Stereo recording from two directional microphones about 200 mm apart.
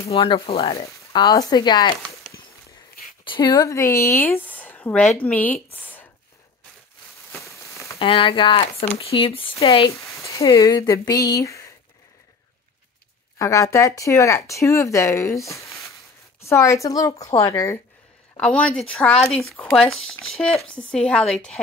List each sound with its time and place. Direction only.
0.1 s speech: 30° left (ahead or behind)
3.3 s speech: 20° left (ahead or behind)
7.4 s a sound: 15° left (ahead or behind)
8.0 s speech: 25° left (ahead or behind)
9.9 s speech: 15° left (ahead or behind)
13.4 s speech: 15° left (ahead or behind)